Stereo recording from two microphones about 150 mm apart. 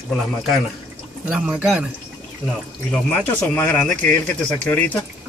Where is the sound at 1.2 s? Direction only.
5° right (ahead or behind).